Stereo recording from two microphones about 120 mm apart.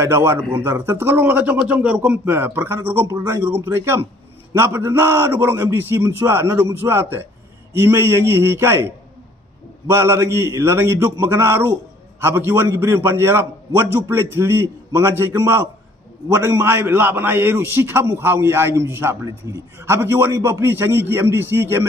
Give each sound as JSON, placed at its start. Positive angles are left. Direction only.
{"t": 0.0, "sound": "a man's voice", "side_deg": -20}